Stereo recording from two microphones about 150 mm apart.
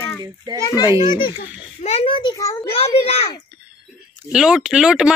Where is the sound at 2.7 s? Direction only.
40° left (ahead or behind).